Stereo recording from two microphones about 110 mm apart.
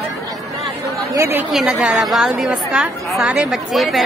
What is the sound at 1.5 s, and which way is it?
A woman's voice, centre (ahead or behind).